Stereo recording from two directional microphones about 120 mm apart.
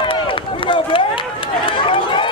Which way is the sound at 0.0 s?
45° left (ahead or behind).